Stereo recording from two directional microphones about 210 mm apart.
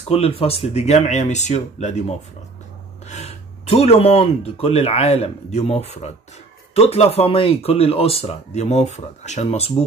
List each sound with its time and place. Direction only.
0.1 s speech: 25° left (ahead or behind)